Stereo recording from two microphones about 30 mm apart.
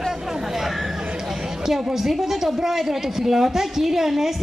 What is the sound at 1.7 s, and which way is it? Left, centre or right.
A woman's voice, centre.